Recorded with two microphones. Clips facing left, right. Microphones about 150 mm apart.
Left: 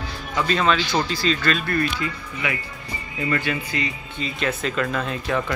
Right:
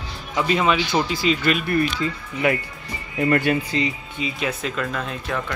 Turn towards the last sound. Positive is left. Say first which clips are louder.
# left 3 dB
turn(degrees=0)  # may be behind; listen again after turning